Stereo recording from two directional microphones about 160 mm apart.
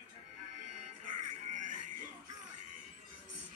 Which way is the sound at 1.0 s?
50° right (ahead or behind).